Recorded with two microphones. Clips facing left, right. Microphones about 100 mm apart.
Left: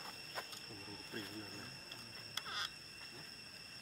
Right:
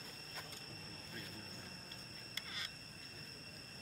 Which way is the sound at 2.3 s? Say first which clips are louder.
Left 5 dB; 55° left (ahead or behind).